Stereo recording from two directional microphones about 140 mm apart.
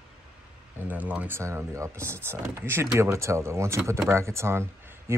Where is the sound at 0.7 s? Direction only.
10° right (ahead or behind).